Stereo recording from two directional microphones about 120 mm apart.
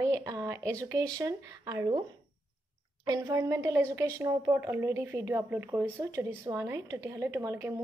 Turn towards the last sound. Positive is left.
turn(degrees=-20)  # may be behind; listen again after turning